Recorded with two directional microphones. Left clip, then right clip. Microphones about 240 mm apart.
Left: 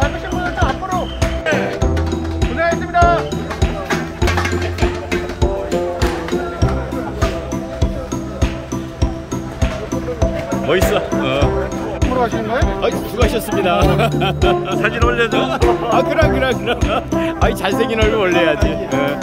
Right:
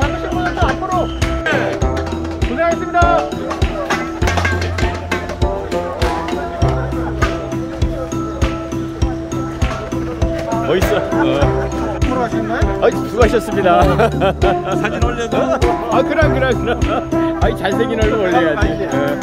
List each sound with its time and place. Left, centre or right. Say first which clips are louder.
2.6 s music: even; right
10.7 s music: left 1 dB; centre
12.8 s speech: right 4 dB; centre